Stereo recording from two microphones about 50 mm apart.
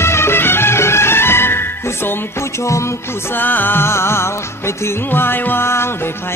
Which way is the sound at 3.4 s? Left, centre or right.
Left.